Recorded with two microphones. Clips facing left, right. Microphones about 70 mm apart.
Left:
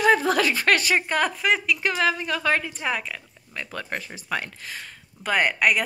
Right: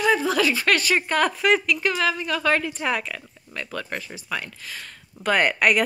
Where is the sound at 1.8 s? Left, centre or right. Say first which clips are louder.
Even; left.